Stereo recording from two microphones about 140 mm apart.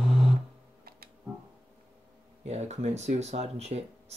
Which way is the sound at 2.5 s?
55° right (ahead or behind).